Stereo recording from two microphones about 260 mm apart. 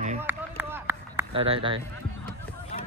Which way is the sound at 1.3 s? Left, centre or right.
Right.